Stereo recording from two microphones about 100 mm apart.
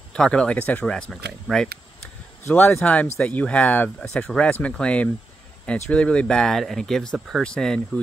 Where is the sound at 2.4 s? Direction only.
25° left (ahead or behind); by 8.0 s 5° left (ahead or behind).